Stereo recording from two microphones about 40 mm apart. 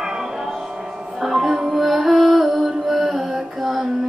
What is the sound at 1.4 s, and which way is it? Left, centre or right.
Music, centre.